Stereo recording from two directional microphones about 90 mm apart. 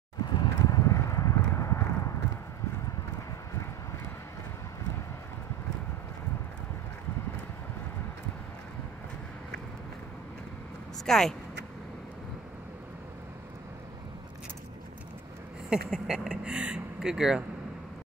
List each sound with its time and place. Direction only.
0.3 s a sound: 45° left (ahead or behind)
11.1 s speech: 5° left (ahead or behind)
15.7 s speech: 10° right (ahead or behind)